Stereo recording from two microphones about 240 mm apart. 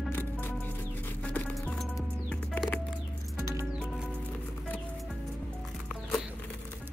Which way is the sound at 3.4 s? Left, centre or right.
Centre.